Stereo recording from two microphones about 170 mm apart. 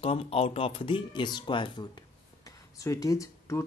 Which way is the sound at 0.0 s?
35° left (ahead or behind).